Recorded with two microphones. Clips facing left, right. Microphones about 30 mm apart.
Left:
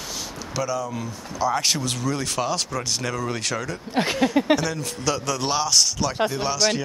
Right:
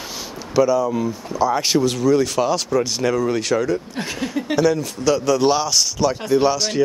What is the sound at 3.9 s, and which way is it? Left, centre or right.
Speech, left.